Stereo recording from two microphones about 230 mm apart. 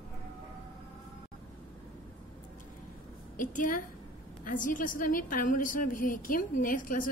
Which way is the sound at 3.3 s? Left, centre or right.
Left.